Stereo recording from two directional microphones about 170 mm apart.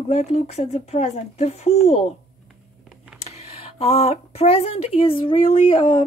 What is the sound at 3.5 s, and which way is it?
A woman's voice, 35° left (ahead or behind).